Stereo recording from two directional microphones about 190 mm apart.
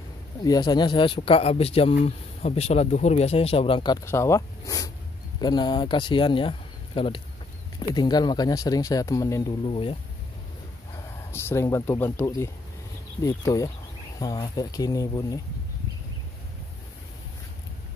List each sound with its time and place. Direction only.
0.4 s speech: 20° left (ahead or behind)
7.9 s speech: 20° left (ahead or behind)
9.7 s speech: 30° left (ahead or behind)
11.3 s speech: 15° left (ahead or behind)